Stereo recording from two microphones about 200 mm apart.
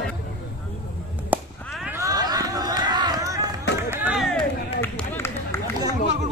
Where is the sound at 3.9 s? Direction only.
5° right (ahead or behind).